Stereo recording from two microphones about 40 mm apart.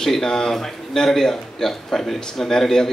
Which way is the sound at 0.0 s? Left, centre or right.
Centre.